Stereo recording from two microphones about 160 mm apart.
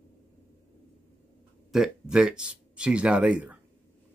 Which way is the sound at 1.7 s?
5° right (ahead or behind).